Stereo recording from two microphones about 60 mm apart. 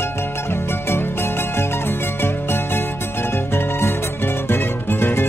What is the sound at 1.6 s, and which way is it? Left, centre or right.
Music, left.